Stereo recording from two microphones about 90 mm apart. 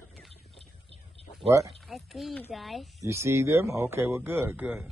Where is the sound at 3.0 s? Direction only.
30° right (ahead or behind).